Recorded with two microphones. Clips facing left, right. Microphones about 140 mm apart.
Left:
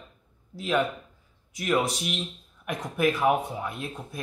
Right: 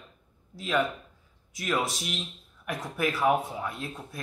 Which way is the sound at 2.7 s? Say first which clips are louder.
Left 2 dB; 20° left (ahead or behind).